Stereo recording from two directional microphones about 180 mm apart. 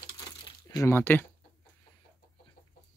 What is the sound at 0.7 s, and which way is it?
Speech, 15° left (ahead or behind).